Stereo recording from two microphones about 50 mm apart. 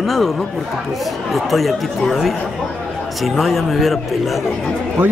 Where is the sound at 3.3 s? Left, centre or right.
Centre.